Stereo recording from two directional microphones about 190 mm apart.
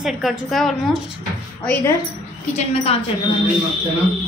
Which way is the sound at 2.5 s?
30° left (ahead or behind).